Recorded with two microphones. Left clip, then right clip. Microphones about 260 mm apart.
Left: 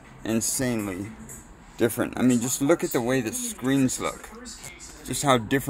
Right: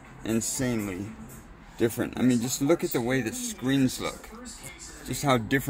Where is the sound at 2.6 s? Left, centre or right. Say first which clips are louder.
Left 2 dB; left.